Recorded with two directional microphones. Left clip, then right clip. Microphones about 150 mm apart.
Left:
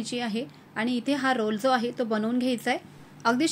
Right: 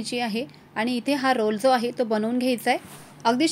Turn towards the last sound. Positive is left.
turn(degrees=-30)  # may be behind; listen again after turning